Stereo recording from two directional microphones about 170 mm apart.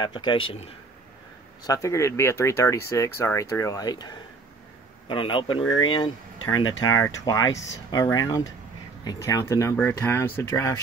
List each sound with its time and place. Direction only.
0.0 s speech: 25° left (ahead or behind)
1.6 s speech: 20° left (ahead or behind)